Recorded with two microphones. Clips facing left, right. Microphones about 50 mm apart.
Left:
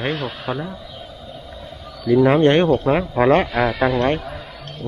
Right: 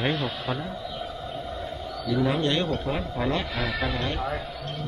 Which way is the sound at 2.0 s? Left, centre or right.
Left.